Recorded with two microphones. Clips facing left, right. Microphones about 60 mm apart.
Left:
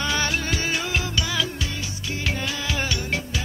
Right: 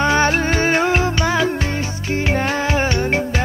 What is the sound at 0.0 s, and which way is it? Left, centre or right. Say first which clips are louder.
Music: right 9 dB; right.